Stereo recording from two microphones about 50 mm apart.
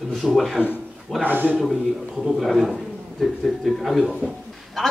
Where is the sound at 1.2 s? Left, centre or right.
Right.